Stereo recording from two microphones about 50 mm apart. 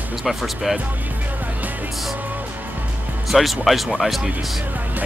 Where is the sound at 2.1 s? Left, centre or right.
Right.